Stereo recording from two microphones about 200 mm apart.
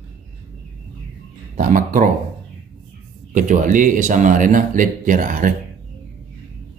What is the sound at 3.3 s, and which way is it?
Speech, 40° right (ahead or behind).